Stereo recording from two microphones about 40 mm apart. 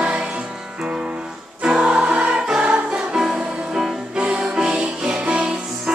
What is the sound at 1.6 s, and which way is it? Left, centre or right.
Choir, right.